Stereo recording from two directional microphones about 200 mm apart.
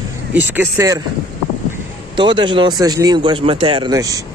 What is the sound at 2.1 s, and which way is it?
Speech, 25° right (ahead or behind).